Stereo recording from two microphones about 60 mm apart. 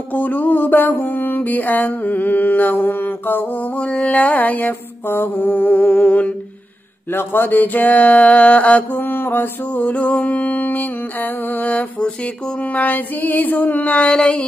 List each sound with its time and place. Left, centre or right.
0.1 s mantra: left
7.1 s mantra: left
9.0 s mantra: left; by 14.4 s centre